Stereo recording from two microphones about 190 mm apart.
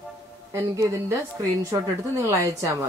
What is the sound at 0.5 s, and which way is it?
Speech, 15° right (ahead or behind).